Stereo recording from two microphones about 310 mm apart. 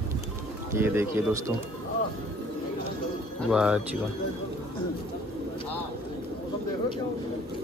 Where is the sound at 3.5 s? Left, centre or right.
Centre.